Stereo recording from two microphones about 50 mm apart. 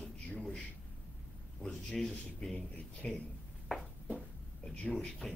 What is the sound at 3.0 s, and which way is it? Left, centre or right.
Speech, centre.